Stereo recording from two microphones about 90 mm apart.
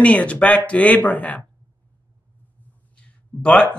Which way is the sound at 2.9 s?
10° left (ahead or behind).